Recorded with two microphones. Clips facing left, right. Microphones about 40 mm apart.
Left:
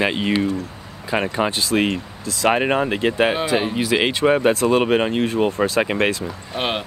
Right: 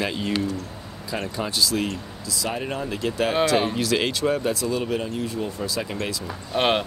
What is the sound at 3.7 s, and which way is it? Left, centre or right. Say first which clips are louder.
Speech: left 4 dB; left.